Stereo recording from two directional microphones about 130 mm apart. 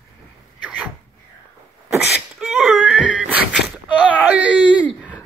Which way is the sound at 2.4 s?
Centre (ahead or behind).